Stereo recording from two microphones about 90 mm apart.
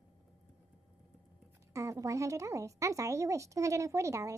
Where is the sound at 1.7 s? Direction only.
35° right (ahead or behind).